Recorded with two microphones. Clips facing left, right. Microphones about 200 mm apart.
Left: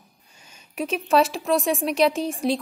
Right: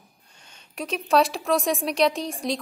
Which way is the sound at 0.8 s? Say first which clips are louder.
Left 1 dB; centre (ahead or behind).